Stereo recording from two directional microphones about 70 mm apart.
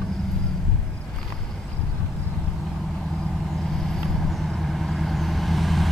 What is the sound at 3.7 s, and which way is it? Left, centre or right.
Vehicle, centre.